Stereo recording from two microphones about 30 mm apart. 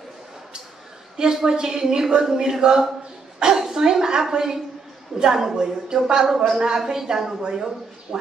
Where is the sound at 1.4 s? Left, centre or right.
Right.